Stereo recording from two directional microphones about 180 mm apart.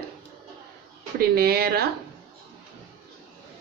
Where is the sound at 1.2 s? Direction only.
60° right (ahead or behind).